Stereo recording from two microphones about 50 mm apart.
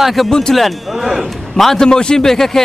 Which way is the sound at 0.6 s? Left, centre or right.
Centre.